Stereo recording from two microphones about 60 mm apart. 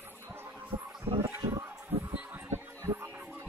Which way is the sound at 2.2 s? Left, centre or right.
Right.